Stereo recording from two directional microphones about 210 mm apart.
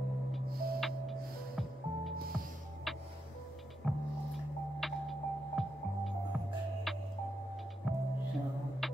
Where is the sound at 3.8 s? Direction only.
Centre (ahead or behind).